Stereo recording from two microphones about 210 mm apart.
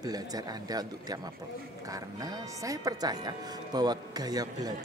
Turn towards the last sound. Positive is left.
turn(degrees=-20)  # may be behind; listen again after turning